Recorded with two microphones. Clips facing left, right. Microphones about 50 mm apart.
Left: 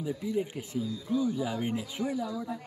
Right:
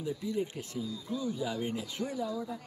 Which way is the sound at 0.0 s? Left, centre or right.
Centre.